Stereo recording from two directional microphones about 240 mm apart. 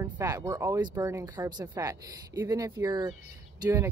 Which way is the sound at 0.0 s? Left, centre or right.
Centre.